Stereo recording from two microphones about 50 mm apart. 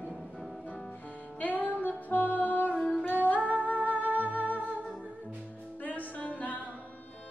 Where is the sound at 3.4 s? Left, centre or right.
Left.